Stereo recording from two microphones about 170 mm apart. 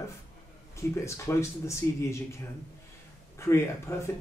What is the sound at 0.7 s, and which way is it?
Speech, 15° left (ahead or behind).